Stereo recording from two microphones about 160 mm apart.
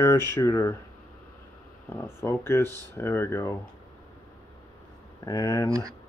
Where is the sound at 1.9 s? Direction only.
15° left (ahead or behind).